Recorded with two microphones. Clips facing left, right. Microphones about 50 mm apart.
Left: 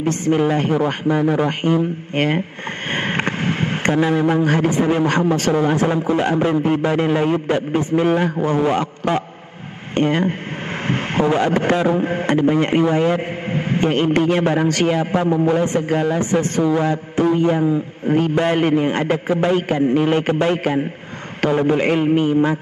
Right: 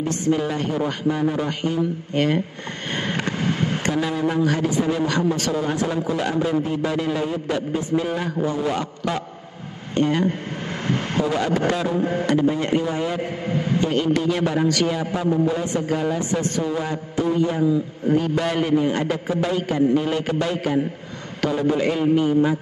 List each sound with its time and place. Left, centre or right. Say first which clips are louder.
0.0 s a man's voice: left 4 dB; left